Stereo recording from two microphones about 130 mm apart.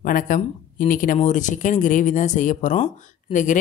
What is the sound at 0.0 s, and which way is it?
Speech, 90° left.